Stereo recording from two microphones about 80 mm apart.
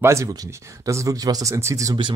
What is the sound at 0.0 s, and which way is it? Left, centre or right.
Speech, right.